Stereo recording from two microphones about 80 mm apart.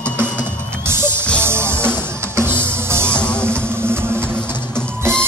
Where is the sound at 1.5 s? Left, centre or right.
Right.